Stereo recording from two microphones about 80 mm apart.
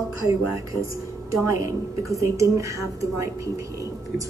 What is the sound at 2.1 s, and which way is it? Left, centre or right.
Speech, right.